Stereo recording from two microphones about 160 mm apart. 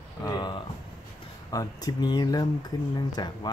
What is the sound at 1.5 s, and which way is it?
Speech, 20° left (ahead or behind).